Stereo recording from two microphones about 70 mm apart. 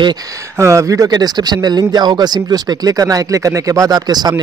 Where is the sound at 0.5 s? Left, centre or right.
Right.